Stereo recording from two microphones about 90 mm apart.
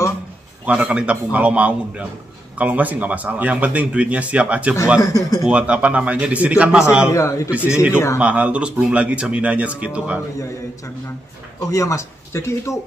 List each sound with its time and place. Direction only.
0.7 s a man's voice: 10° right (ahead or behind)
5.0 s speech: 40° left (ahead or behind)
5.5 s a man's voice: 15° right (ahead or behind)
7.1 s speech: 35° left (ahead or behind)
7.5 s a man's voice: 15° right (ahead or behind)
11.7 s speech: 35° left (ahead or behind)